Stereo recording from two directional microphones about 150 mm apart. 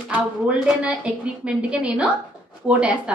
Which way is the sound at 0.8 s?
10° right (ahead or behind).